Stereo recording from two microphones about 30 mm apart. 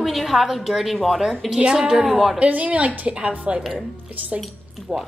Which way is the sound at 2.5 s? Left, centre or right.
Right.